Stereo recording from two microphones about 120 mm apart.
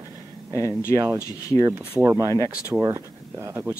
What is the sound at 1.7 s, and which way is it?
Speech, 25° right (ahead or behind).